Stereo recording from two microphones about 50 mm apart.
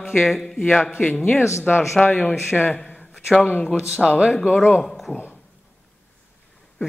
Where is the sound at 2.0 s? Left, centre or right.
Centre.